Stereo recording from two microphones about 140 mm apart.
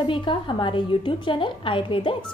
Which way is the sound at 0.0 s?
35° left (ahead or behind).